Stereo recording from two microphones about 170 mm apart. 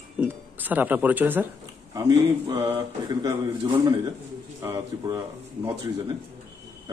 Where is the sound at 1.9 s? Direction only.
25° right (ahead or behind).